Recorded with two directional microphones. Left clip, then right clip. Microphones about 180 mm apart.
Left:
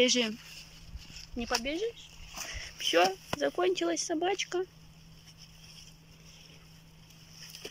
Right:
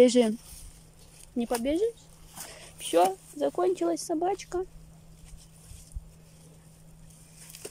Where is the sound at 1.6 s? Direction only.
35° right (ahead or behind).